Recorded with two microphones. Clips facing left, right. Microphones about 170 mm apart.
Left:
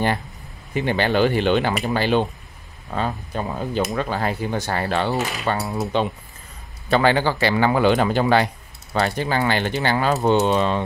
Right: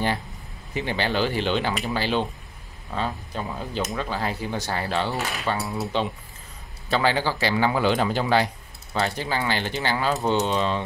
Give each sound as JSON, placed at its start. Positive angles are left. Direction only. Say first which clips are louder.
{"t": 0.7, "sound": "speech", "louder": "left 5 dB", "side_deg": 55}
{"t": 5.4, "sound": "coin", "louder": "left 3 dB", "side_deg": 55}
{"t": 5.9, "sound": "speech", "louder": "left 4 dB", "side_deg": 55}